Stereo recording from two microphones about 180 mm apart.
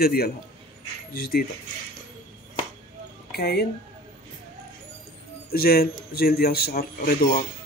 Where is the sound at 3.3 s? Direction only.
65° left (ahead or behind).